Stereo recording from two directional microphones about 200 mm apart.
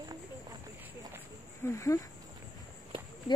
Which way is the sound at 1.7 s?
15° left (ahead or behind).